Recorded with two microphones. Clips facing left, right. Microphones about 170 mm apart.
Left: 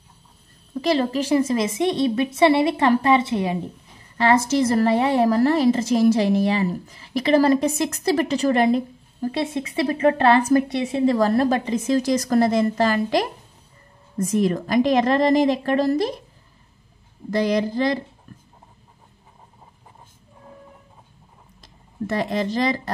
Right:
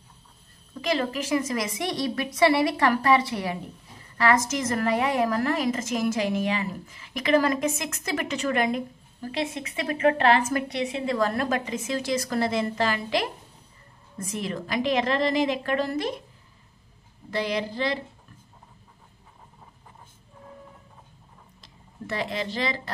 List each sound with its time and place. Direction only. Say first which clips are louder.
0.7 s a woman's voice: left 6 dB; 35° left (ahead or behind)
17.3 s a woman's voice: left 7 dB; 40° left (ahead or behind)
22.0 s a woman's voice: left 7 dB; 45° left (ahead or behind)